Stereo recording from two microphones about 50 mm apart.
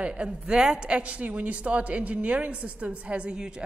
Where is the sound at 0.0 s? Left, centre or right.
Right.